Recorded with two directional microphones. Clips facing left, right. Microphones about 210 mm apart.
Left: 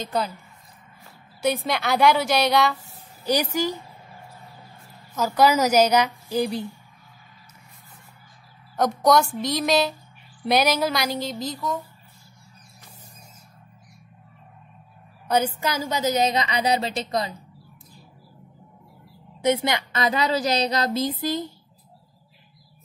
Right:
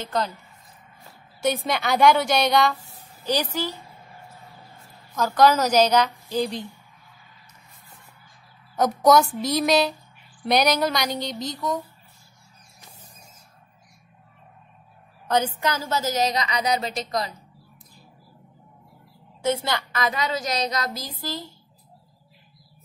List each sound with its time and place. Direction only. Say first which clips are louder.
1.4 s a woman's voice: even; centre (ahead or behind)
5.1 s a woman's voice: right 1 dB; 10° left (ahead or behind)
8.7 s a woman's voice: right 1 dB; centre (ahead or behind)
15.2 s a woman's voice: even; 10° left (ahead or behind); by 17.3 s 25° left (ahead or behind)
19.4 s a woman's voice: left 3 dB; 20° left (ahead or behind)